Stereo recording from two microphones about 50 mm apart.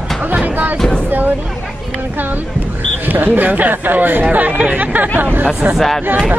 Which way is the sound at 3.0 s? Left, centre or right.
Right.